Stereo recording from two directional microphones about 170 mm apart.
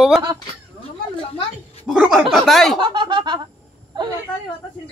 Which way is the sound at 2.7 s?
30° right (ahead or behind).